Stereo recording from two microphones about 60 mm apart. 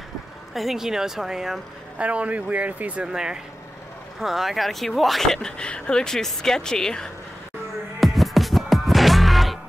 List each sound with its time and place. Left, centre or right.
0.6 s speech: centre
2.0 s speech: right
3.1 s speech: centre
8.0 s music: centre